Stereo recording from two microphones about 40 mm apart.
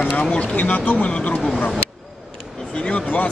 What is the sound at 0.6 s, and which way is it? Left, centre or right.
Speech, left.